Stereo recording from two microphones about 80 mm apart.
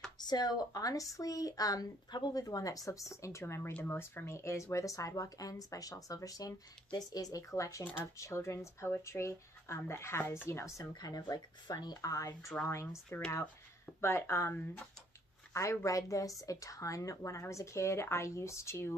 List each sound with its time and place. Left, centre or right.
0.2 s speech: left
2.4 s a woman's voice: left
10.8 s a woman's voice: left
15.5 s a woman's voice: left